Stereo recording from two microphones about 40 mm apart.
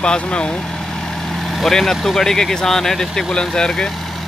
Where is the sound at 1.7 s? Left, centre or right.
Centre.